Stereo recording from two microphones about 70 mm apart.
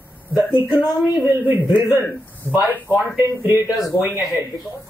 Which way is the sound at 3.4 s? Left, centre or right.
Right.